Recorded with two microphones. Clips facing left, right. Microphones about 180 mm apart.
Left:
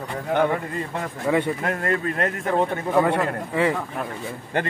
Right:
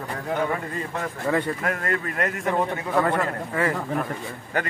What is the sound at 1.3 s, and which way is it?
Speech, 5° left (ahead or behind).